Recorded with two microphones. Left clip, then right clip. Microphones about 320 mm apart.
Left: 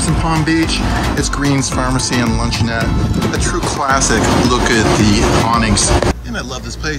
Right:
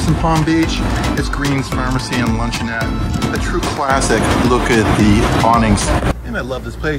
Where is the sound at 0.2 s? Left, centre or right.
Centre.